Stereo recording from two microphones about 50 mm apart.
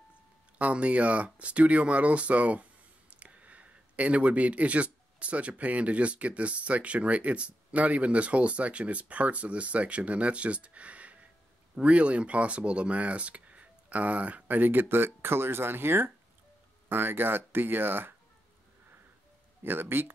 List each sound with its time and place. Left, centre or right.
0.6 s speech: right
19.6 s speech: right